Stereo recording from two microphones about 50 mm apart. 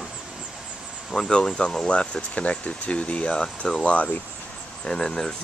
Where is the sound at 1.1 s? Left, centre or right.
Centre.